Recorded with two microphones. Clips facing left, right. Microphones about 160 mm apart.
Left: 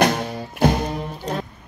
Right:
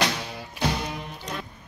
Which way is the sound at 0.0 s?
45° left (ahead or behind).